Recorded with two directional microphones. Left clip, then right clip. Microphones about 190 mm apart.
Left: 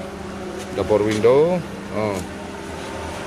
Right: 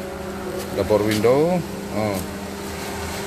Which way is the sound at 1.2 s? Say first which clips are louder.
Left 4 dB; centre (ahead or behind).